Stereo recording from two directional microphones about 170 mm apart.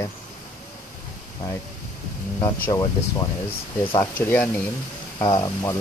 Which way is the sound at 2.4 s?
20° left (ahead or behind).